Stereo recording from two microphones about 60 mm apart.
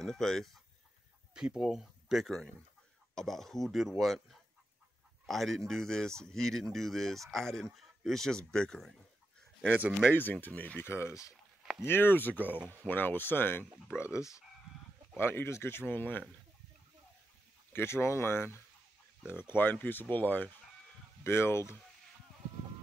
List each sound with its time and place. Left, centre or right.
0.0 s speech: centre
1.3 s a man's voice: centre
10.1 s speech: left
10.8 s speech: left
13.9 s speech: left
15.1 s speech: left
17.7 s speech: left
21.2 s speech: left